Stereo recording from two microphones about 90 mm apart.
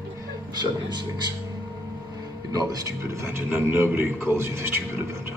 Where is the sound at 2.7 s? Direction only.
40° right (ahead or behind).